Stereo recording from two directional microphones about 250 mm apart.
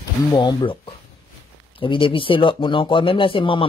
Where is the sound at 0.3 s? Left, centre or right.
Centre.